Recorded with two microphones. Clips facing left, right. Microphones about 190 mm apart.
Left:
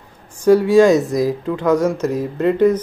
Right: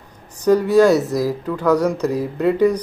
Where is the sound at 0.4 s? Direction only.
10° left (ahead or behind).